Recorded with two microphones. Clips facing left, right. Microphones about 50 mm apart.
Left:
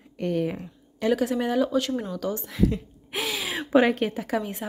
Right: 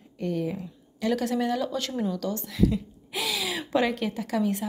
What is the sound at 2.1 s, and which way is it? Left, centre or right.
Speech, centre.